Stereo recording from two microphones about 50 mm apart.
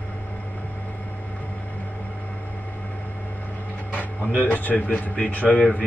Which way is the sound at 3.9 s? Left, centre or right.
Left.